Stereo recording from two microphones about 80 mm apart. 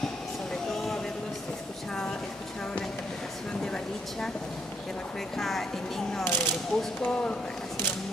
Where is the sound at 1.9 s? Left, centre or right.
Centre.